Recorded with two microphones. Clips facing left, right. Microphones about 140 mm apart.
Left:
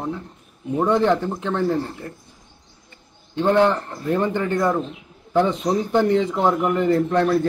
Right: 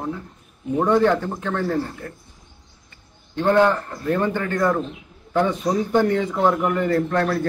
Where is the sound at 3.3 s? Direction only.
20° left (ahead or behind).